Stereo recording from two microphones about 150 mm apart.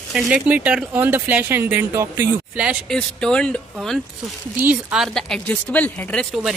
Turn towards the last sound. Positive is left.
turn(degrees=10)  # may be behind; listen again after turning